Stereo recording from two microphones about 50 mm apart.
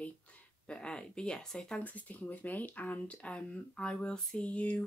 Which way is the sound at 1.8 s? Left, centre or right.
Left.